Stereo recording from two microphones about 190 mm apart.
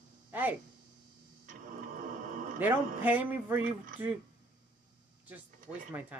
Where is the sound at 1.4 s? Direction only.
45° right (ahead or behind).